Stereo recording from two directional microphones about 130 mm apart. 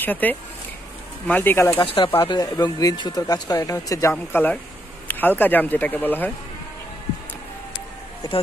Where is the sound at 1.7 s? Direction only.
40° left (ahead or behind); by 6.3 s 15° left (ahead or behind).